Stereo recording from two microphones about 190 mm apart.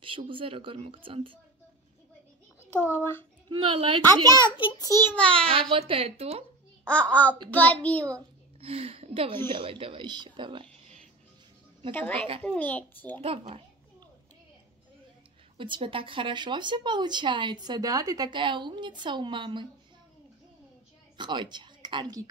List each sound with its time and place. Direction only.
0.0 s speech: 25° right (ahead or behind)
2.9 s a child's voice: 10° left (ahead or behind)
3.4 s speech: 25° right (ahead or behind)
4.4 s a child's voice: 25° left (ahead or behind); by 5.5 s 5° left (ahead or behind)
5.5 s speech: 30° right (ahead or behind)
6.9 s a child's voice: 5° left (ahead or behind)
8.5 s speech: 30° right (ahead or behind)
10.7 s music: 5° left (ahead or behind)
11.9 s a child's voice: 10° left (ahead or behind)
13.2 s children playing: 30° right (ahead or behind)
15.5 s speech: 25° right (ahead or behind)
21.2 s speech: 25° right (ahead or behind)